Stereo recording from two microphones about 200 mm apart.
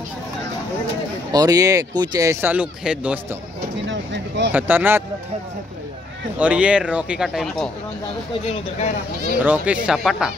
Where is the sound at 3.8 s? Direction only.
65° right (ahead or behind).